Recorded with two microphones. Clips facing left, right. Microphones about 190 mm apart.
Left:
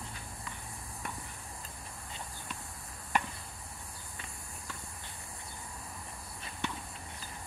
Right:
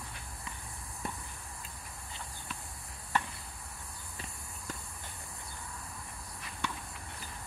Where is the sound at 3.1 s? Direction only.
15° left (ahead or behind).